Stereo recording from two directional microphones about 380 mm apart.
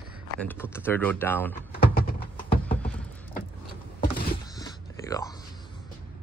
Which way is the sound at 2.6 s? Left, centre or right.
Centre.